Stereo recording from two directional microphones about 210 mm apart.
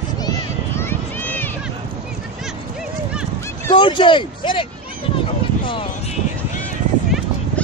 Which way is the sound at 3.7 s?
25° left (ahead or behind).